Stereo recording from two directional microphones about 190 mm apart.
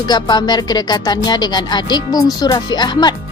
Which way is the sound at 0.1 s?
20° left (ahead or behind).